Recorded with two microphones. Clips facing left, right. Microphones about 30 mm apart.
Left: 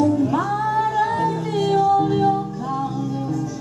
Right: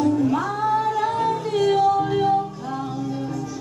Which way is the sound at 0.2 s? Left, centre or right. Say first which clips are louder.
Left 1 dB; centre.